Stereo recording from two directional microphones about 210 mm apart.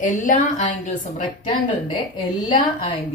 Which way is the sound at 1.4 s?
20° left (ahead or behind).